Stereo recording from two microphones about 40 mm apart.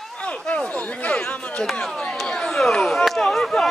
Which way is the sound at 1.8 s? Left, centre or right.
Centre.